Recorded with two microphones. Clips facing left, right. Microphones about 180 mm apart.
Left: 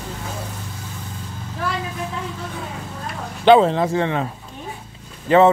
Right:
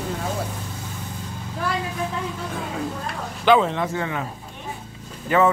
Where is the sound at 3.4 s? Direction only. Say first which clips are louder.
Left 5 dB; 30° left (ahead or behind).